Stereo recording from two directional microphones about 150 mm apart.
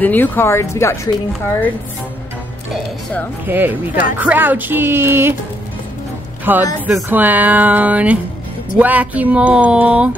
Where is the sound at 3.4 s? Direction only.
15° right (ahead or behind).